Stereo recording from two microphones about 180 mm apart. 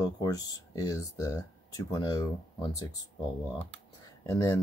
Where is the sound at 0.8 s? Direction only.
20° left (ahead or behind).